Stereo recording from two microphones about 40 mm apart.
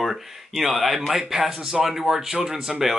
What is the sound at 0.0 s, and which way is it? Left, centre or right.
Speech, centre.